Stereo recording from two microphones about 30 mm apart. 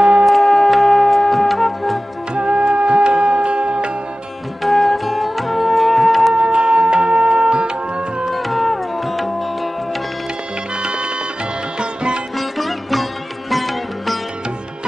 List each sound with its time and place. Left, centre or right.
0.2 s music: centre
2.3 s music: right
4.6 s music: centre
6.3 s music: right
8.3 s music: centre
10.8 s music: right
11.8 s sitar: right
12.4 s sitar: centre